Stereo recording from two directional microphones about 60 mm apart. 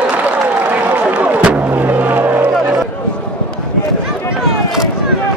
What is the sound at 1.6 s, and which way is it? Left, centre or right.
Vehicle, right.